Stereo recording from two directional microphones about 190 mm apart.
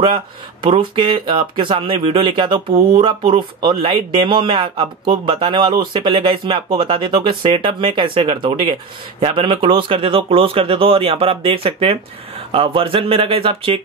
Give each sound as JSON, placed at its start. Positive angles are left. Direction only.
{"t": 0.0, "sound": "speech", "side_deg": -25}